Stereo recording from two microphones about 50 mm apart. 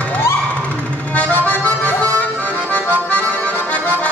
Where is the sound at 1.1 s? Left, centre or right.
Left.